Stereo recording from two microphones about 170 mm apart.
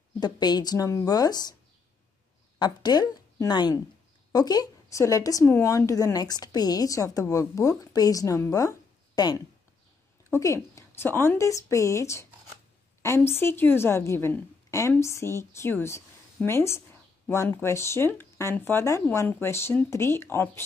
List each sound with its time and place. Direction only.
0.2 s a woman's voice: 25° left (ahead or behind)
2.6 s a woman's voice: 25° left (ahead or behind)